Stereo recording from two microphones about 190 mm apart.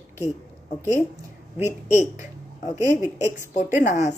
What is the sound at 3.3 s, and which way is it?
Speech, 40° left (ahead or behind).